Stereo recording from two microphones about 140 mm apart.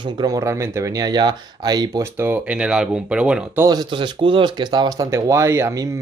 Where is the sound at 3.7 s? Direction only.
30° right (ahead or behind).